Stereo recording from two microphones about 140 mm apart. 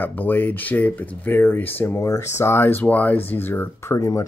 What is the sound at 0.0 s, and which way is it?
Speech, 15° left (ahead or behind).